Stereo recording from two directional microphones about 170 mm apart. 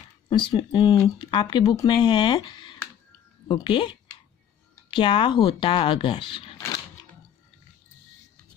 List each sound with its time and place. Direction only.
0.3 s speech: 30° left (ahead or behind)